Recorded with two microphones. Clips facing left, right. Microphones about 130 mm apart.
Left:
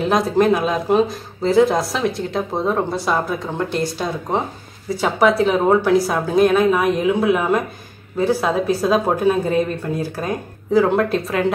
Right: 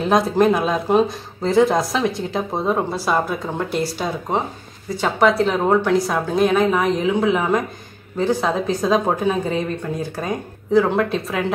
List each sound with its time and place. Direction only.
0.0 s speech: centre (ahead or behind)